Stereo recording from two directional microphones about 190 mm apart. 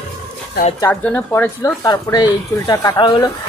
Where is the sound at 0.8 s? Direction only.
10° left (ahead or behind).